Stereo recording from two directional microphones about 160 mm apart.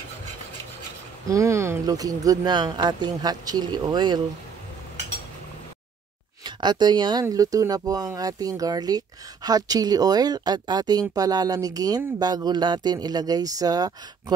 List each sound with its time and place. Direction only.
1.2 s speech: 20° right (ahead or behind)
6.4 s speech: 25° right (ahead or behind)